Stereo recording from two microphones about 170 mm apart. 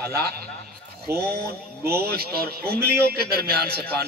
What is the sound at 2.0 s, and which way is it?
A man's voice, 65° right (ahead or behind).